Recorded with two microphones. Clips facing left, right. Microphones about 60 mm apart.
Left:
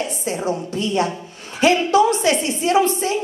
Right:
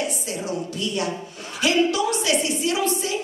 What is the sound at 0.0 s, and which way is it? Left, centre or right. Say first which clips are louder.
A woman's voice: left 4 dB; left.